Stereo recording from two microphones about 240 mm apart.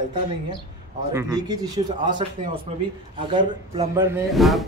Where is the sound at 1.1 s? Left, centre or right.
Centre.